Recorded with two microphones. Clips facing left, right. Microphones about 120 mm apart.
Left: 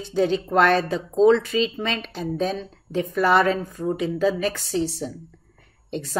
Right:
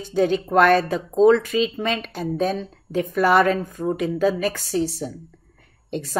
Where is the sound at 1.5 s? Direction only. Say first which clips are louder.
Right 1 dB; 5° right (ahead or behind).